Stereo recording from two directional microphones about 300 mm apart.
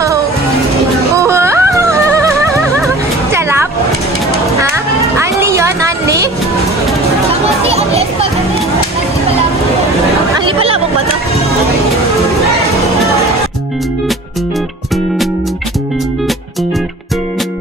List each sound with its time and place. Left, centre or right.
1.1 s music: centre
5.2 s a sound: centre
7.6 s children playing: centre